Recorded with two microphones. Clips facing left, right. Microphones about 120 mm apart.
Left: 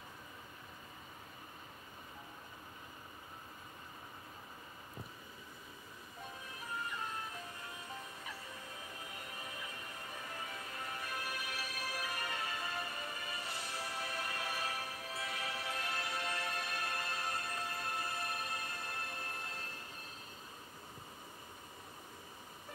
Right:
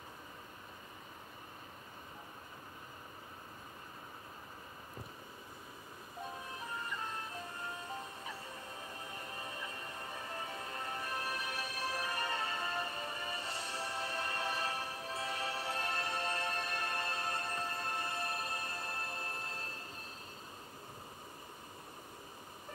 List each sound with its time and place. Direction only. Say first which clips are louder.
7.6 s music: right 4 dB; 40° right (ahead or behind)